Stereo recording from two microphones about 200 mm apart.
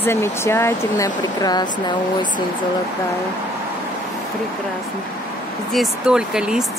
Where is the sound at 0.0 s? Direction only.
10° left (ahead or behind).